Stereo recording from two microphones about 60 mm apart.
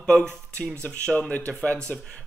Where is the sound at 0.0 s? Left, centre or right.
Centre.